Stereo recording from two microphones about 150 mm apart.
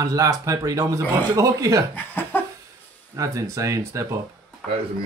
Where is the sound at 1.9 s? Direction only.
15° left (ahead or behind).